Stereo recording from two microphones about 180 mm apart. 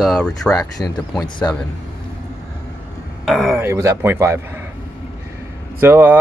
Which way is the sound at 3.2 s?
Centre (ahead or behind).